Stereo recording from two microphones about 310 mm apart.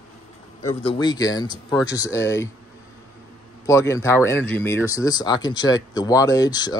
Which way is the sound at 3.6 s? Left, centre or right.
Centre.